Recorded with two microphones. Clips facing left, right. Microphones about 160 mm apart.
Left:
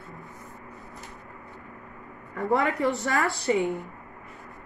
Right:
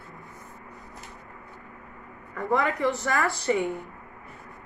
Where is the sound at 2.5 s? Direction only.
20° left (ahead or behind).